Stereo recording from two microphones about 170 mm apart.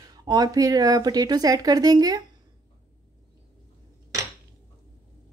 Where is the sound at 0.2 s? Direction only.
25° right (ahead or behind).